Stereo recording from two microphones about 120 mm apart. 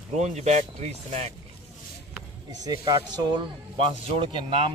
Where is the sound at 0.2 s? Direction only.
70° right (ahead or behind).